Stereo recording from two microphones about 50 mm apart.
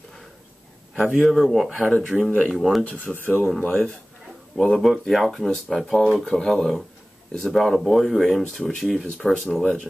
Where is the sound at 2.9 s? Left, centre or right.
Right.